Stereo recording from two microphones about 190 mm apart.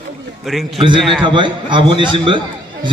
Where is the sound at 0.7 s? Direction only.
25° right (ahead or behind).